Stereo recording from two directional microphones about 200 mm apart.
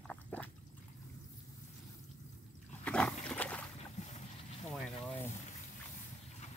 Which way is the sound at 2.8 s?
5° left (ahead or behind).